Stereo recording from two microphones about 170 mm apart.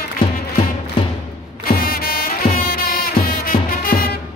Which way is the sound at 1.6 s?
60° left (ahead or behind).